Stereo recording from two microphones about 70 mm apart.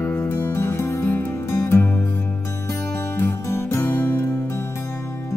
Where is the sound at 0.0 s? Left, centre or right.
Left.